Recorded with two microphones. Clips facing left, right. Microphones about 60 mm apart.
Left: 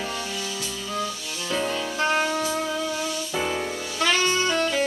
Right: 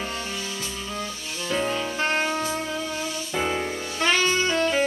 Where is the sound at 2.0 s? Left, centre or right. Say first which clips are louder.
Left 3 dB; right.